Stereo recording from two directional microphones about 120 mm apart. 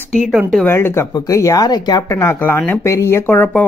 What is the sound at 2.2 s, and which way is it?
Speech, 20° left (ahead or behind).